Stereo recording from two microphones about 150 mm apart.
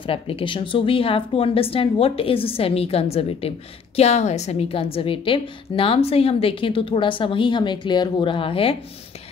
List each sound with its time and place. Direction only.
0.0 s speech: 35° left (ahead or behind)